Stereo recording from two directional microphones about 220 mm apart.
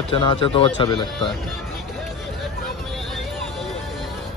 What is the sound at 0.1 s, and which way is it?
Speech, 25° left (ahead or behind).